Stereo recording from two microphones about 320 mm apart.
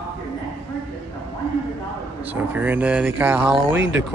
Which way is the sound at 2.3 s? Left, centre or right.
Centre.